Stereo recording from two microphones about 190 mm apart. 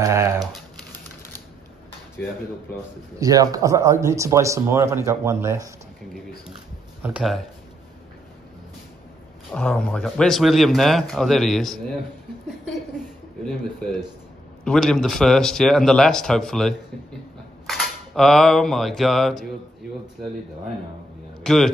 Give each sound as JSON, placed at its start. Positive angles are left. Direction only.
{"t": 0.0, "sound": "typing", "side_deg": -15}
{"t": 3.2, "sound": "speech", "side_deg": -20}
{"t": 7.0, "sound": "a man's voice", "side_deg": -5}
{"t": 9.5, "sound": "a man's voice", "side_deg": 5}
{"t": 13.5, "sound": "a man's voice", "side_deg": 5}
{"t": 17.6, "sound": "a sound", "side_deg": 0}
{"t": 21.4, "sound": "a man's voice", "side_deg": 0}